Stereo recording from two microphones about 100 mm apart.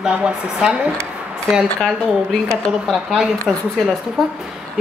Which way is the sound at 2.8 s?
5° right (ahead or behind).